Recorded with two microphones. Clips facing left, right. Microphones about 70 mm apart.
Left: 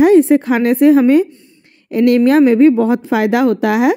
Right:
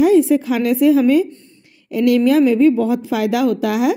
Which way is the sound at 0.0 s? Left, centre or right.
Left.